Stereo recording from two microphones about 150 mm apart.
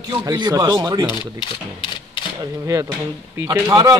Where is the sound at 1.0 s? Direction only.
30° left (ahead or behind).